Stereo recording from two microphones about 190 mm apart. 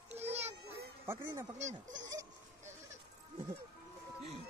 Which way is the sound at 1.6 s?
40° right (ahead or behind).